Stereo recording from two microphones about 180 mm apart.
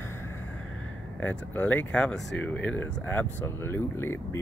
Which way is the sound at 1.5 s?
10° left (ahead or behind).